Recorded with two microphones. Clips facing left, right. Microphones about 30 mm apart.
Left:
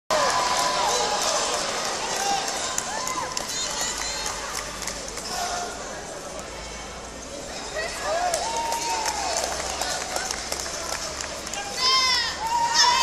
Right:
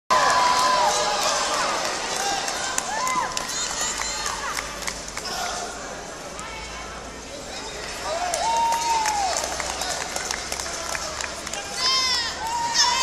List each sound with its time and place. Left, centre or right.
0.1 s run: centre
2.7 s a sound: centre
4.0 s run: centre
5.3 s a sound: centre
8.0 s run: centre
8.4 s applause: centre
9.8 s run: centre
11.8 s run: centre
12.7 s a sound: centre